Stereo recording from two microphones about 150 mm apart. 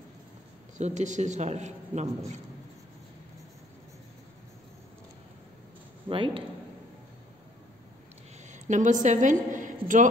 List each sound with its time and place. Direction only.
0.7 s a man's voice: 50° right (ahead or behind)
6.0 s speech: 35° right (ahead or behind)
8.5 s a woman's voice: 55° right (ahead or behind)